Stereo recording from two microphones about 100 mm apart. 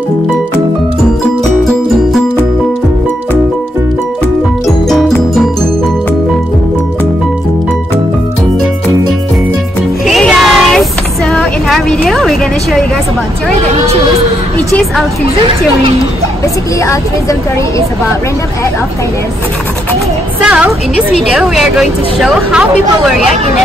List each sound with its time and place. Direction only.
1.6 s music: centre (ahead or behind)
4.8 s music: 5° left (ahead or behind)
10.0 s music: centre (ahead or behind)
10.4 s a sound: centre (ahead or behind)
16.8 s speech: 30° left (ahead or behind)
20.3 s speech: 15° right (ahead or behind)